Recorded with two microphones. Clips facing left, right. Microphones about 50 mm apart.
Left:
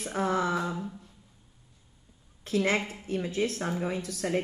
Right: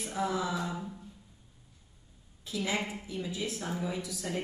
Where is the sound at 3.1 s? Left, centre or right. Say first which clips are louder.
Left 6 dB; left.